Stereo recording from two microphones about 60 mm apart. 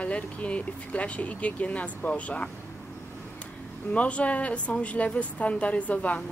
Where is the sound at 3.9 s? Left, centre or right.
Left.